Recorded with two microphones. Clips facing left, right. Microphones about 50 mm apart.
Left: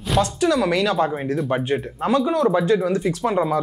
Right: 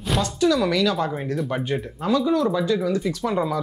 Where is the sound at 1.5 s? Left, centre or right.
Centre.